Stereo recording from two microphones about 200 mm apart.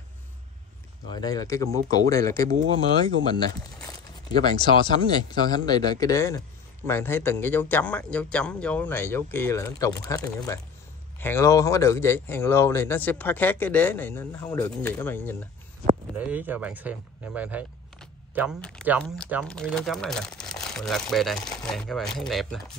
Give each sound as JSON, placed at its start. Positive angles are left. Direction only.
{"t": 1.1, "sound": "speech", "side_deg": 20}
{"t": 2.5, "sound": "speech", "side_deg": -90}
{"t": 4.4, "sound": "speech", "side_deg": 20}
{"t": 16.2, "sound": "speech", "side_deg": -10}
{"t": 18.6, "sound": "speech", "side_deg": 5}